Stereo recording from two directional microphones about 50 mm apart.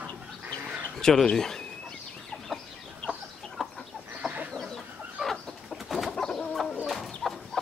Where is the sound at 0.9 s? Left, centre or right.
Centre.